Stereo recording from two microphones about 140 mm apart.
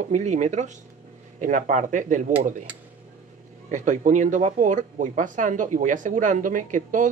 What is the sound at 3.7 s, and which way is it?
Speech, 65° right (ahead or behind).